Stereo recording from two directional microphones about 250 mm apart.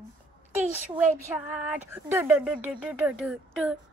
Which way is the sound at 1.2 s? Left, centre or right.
Centre.